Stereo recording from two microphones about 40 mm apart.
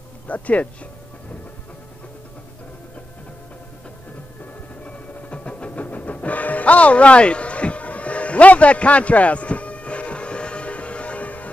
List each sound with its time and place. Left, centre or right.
0.3 s speech: left
4.8 s train: left
5.7 s music: left